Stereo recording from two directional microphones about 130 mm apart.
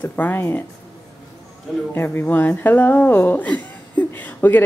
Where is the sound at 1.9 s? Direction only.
15° left (ahead or behind).